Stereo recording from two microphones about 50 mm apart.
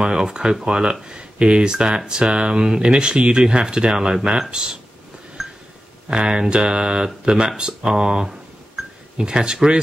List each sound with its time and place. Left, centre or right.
0.0 s speech: centre
5.4 s a sound: centre
6.0 s speech: centre